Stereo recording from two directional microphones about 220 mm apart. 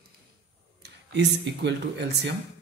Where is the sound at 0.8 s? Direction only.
50° right (ahead or behind).